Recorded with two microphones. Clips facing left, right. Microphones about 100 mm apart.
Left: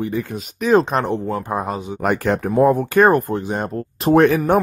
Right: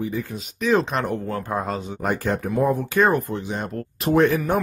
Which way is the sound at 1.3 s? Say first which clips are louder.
Left 3 dB; 20° left (ahead or behind).